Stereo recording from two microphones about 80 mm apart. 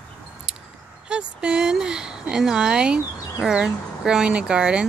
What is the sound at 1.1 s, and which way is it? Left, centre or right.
Speech, centre.